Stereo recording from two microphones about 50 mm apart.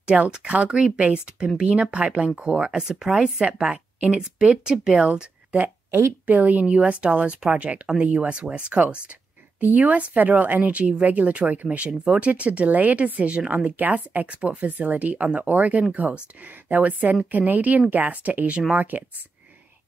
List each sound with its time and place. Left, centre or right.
0.0 s speech: right
5.9 s a woman's voice: right
6.3 s a woman's voice: right